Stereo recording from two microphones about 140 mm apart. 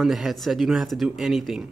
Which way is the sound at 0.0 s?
Centre (ahead or behind).